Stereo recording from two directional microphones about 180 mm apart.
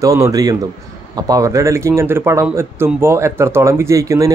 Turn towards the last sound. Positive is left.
turn(degrees=-15)  # may be behind; listen again after turning